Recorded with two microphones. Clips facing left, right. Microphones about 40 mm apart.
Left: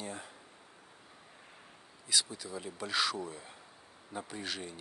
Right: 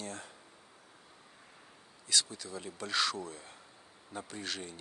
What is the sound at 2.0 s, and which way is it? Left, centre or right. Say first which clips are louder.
Speech: even; centre.